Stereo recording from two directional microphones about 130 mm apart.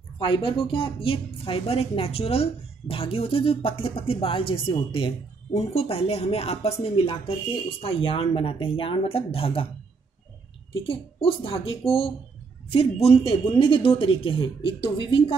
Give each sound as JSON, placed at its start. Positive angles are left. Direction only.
{"t": 0.2, "sound": "speech", "side_deg": 40}
{"t": 10.8, "sound": "speech", "side_deg": 45}